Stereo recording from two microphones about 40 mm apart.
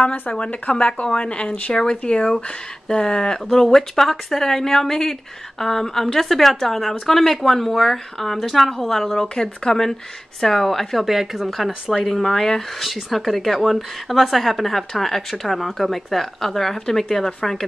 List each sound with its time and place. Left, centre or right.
0.3 s speech: left; by 11.0 s centre
11.0 s speech: centre